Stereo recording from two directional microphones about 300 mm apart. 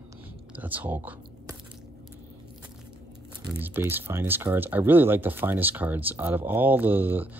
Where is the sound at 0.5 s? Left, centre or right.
Centre.